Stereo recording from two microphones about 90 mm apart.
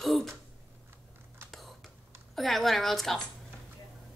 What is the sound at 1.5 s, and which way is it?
Computer keyboard, centre (ahead or behind).